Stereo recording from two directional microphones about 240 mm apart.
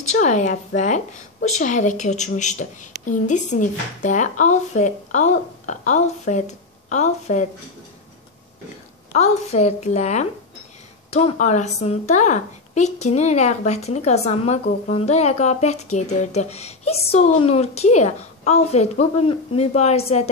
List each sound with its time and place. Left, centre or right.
0.0 s a woman's voice: left
9.1 s a woman's voice: left